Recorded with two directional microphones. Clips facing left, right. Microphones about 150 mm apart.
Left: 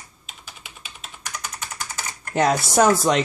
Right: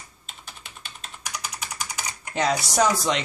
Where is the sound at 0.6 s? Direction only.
5° left (ahead or behind).